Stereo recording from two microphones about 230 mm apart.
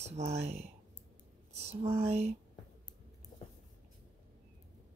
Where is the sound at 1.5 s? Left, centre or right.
Right.